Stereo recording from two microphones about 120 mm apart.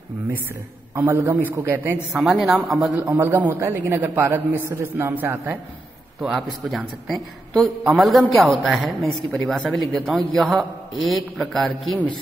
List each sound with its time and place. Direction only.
0.9 s a man's voice: 25° right (ahead or behind)
2.1 s speech: centre (ahead or behind)
2.9 s a man's voice: 15° right (ahead or behind)
6.2 s a woman's voice: centre (ahead or behind)